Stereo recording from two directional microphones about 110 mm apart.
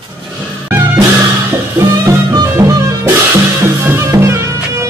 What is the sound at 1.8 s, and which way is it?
Music, 30° right (ahead or behind).